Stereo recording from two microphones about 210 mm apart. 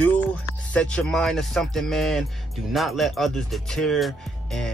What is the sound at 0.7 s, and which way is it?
Speech, 5° left (ahead or behind).